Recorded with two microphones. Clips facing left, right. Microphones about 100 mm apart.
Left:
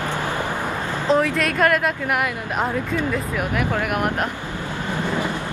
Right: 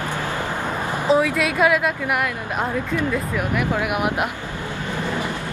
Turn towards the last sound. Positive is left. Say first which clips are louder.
# even
turn(degrees=-5)  # may be behind; listen again after turning